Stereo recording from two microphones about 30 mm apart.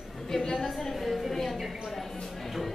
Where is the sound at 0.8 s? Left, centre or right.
Centre.